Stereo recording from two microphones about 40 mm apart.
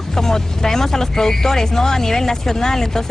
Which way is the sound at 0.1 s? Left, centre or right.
Centre.